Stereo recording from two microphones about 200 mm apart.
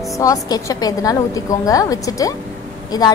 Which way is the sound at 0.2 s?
15° left (ahead or behind).